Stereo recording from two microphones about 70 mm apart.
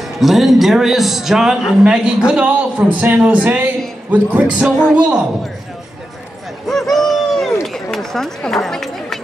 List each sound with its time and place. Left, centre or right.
0.2 s a man's voice: centre
6.7 s a sound: centre
8.6 s speech: centre